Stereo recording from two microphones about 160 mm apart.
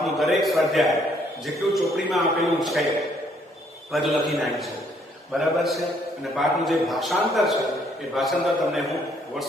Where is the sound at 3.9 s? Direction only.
Centre (ahead or behind).